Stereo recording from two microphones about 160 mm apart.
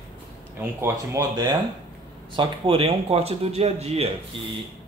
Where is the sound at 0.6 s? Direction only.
15° right (ahead or behind); by 4.1 s 40° right (ahead or behind).